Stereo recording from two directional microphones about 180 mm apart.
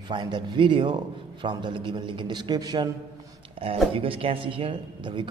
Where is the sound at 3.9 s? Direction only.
30° right (ahead or behind).